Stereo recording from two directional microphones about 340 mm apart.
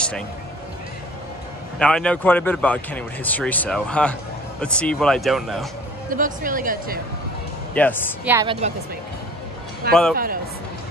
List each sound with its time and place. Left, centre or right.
1.8 s speech: centre
6.0 s speech: right
7.7 s speech: centre
8.3 s a woman's voice: centre
10.1 s speech: right